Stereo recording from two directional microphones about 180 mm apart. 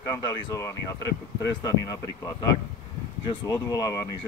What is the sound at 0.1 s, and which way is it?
Speech, 20° left (ahead or behind).